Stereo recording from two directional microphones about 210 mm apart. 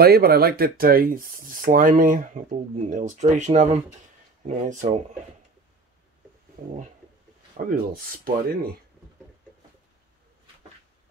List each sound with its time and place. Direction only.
0.0 s speech: 50° right (ahead or behind)
7.5 s speech: 45° right (ahead or behind)